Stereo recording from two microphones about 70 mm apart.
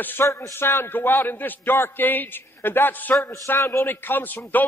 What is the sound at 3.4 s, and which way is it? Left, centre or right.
Speech, left.